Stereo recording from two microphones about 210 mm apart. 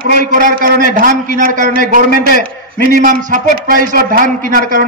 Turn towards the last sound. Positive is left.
turn(degrees=-40)  # may be behind; listen again after turning